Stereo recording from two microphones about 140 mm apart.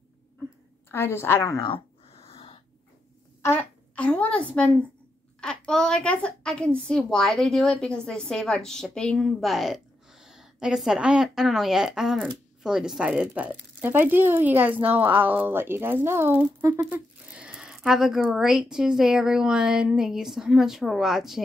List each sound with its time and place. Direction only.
0.9 s a woman's voice: 15° left (ahead or behind)
1.6 s a sound: 40° left (ahead or behind)
3.4 s speech: 10° left (ahead or behind)